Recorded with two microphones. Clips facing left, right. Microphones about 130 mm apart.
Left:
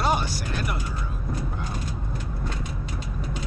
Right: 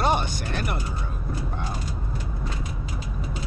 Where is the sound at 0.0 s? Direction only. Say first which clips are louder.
Right 1 dB; 5° left (ahead or behind).